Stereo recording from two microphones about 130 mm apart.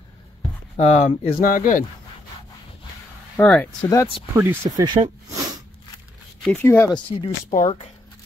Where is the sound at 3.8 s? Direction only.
25° left (ahead or behind).